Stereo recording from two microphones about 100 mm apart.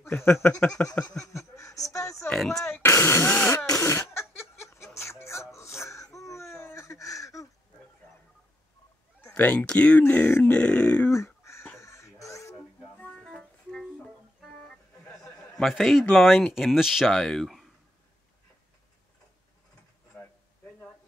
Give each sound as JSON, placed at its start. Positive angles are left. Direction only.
{"t": 0.0, "sound": "speech", "side_deg": 20}
{"t": 0.8, "sound": "speech", "side_deg": 30}
{"t": 2.3, "sound": "speech", "side_deg": 5}
{"t": 2.6, "sound": "speech", "side_deg": 25}
{"t": 3.3, "sound": "cough", "side_deg": 20}
{"t": 3.6, "sound": "a sound", "side_deg": 30}
{"t": 9.3, "sound": "speech", "side_deg": 15}
{"t": 11.1, "sound": "crow", "side_deg": 30}
{"t": 13.2, "sound": "organ", "side_deg": 5}
{"t": 15.5, "sound": "speech", "side_deg": 0}
{"t": 20.1, "sound": "a sound", "side_deg": 10}